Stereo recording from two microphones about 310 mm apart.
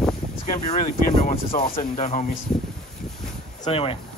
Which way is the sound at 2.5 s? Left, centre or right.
Centre.